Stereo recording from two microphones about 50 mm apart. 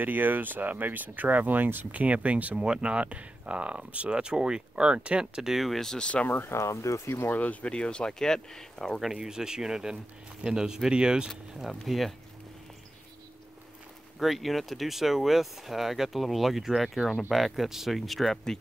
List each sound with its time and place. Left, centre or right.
0.0 s speech: right
2.5 s speech: centre
5.2 s speech: centre
6.4 s speech: left
7.2 s speech: left
7.6 s speech: left
9.1 s speech: centre
11.2 s speech: centre
14.2 s speech: centre